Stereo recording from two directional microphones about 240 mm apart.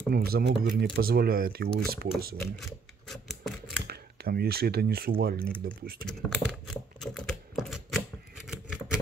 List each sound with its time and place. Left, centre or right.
0.1 s speech: right
2.4 s typewriter: centre
3.8 s speech: right
5.4 s speech: centre
6.7 s typewriter: centre